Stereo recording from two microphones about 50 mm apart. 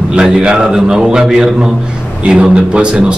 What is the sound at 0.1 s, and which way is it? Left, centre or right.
A man's voice, centre.